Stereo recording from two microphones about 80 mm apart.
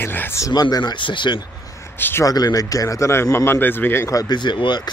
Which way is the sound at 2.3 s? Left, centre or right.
Left.